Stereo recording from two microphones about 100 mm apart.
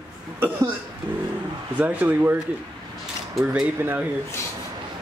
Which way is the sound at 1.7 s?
15° right (ahead or behind).